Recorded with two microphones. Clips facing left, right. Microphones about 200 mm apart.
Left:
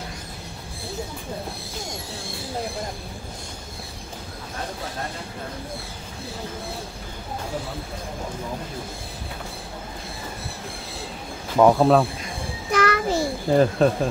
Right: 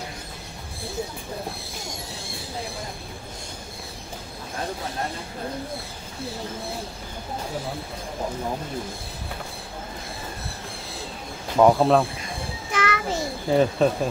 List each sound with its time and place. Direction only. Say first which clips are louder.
11.5 s speech: left 1 dB; centre (ahead or behind)
12.7 s a sound: left 5 dB; 40° left (ahead or behind)
13.5 s speech: left 1 dB; centre (ahead or behind)